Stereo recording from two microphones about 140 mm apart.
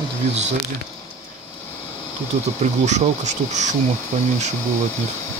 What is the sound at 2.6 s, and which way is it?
Speech, 55° right (ahead or behind).